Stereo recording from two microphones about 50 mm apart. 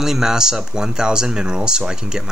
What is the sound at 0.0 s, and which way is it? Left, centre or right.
Speech, centre.